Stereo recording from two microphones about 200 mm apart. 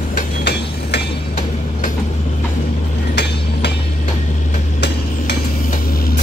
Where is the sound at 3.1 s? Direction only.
55° left (ahead or behind).